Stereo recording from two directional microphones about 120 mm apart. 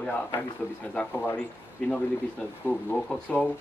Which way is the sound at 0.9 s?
10° left (ahead or behind).